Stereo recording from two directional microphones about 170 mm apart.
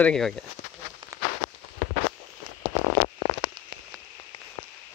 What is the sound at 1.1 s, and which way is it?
Rain on surface, 15° right (ahead or behind).